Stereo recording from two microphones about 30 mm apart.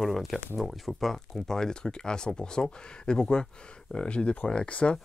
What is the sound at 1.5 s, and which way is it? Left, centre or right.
Speech, left.